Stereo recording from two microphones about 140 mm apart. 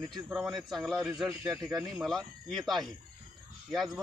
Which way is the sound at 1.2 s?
25° right (ahead or behind).